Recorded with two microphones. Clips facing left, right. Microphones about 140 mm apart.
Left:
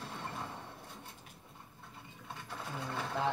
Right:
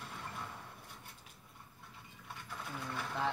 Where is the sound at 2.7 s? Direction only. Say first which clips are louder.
Left 3 dB; 30° left (ahead or behind).